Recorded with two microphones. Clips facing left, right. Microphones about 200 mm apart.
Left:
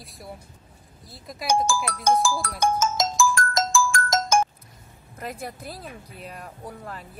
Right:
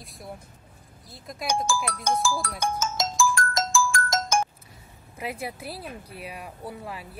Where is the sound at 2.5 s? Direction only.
45° left (ahead or behind).